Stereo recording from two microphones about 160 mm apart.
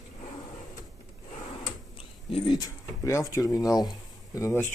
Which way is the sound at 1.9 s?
35° left (ahead or behind).